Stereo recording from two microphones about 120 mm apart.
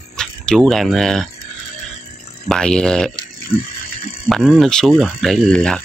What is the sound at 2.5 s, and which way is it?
Speech, 5° left (ahead or behind).